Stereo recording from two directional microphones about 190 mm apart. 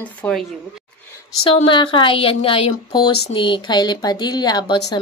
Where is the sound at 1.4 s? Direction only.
30° left (ahead or behind).